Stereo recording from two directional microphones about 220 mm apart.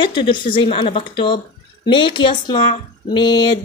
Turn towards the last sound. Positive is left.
turn(degrees=20)  # may be behind; listen again after turning